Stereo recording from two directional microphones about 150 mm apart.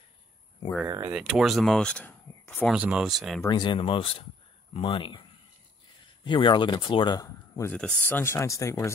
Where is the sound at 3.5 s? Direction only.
30° left (ahead or behind).